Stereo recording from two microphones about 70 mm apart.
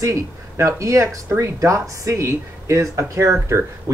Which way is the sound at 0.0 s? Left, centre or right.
Right.